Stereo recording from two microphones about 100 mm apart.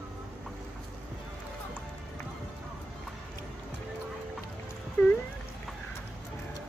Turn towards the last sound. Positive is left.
turn(degrees=10)  # may be behind; listen again after turning